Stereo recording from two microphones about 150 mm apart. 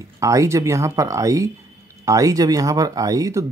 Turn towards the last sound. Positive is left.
turn(degrees=-20)  # may be behind; listen again after turning